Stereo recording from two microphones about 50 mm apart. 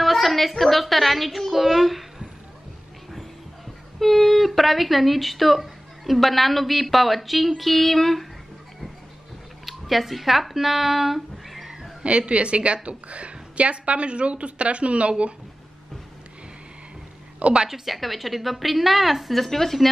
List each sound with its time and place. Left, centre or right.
0.0 s a woman's voice: centre
4.0 s speech: centre
9.7 s speech: centre
12.0 s a woman's voice: right
17.4 s a woman's voice: right
17.6 s speech: centre